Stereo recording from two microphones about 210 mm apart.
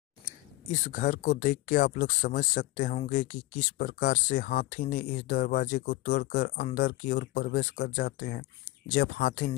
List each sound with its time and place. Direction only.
0.7 s speech: 35° left (ahead or behind)